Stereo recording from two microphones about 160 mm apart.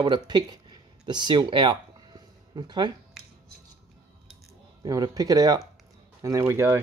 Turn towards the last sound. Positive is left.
turn(degrees=-15)  # may be behind; listen again after turning